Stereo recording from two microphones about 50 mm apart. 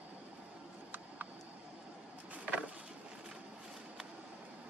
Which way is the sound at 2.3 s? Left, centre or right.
Right.